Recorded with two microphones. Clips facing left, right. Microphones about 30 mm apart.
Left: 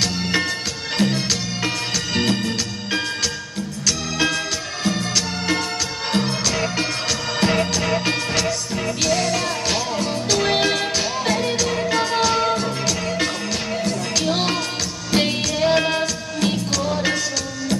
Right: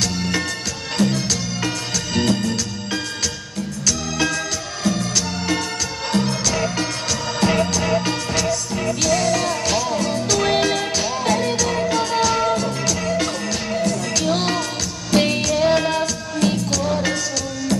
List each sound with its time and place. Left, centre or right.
0.0 s music: left